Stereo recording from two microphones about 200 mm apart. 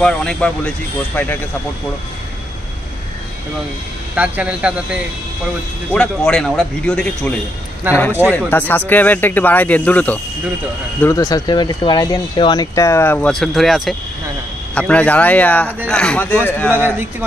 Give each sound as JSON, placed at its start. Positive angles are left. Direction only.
{"t": 0.0, "sound": "speech", "side_deg": 5}
{"t": 4.1, "sound": "speech", "side_deg": -5}
{"t": 7.8, "sound": "a man's voice", "side_deg": -10}
{"t": 8.3, "sound": "speech", "side_deg": 10}